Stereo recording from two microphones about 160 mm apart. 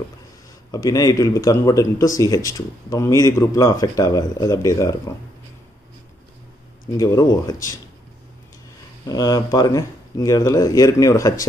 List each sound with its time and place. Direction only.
0.7 s speech: 20° left (ahead or behind)
7.0 s speech: 20° left (ahead or behind)
9.0 s speech: 25° left (ahead or behind)